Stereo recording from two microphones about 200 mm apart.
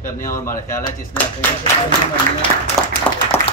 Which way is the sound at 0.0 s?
15° left (ahead or behind).